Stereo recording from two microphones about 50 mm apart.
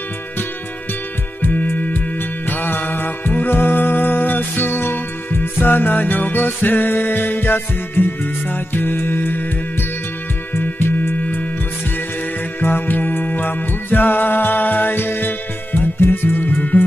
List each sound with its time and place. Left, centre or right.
1.4 s music: left
10.5 s music: left
12.5 s music: left